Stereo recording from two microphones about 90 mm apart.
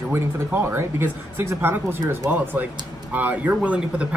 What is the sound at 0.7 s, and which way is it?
Speech, 30° right (ahead or behind).